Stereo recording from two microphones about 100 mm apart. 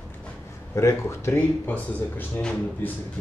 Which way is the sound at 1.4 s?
15° left (ahead or behind).